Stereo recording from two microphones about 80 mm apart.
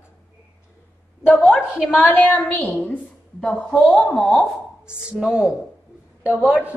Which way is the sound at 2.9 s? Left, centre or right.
Centre.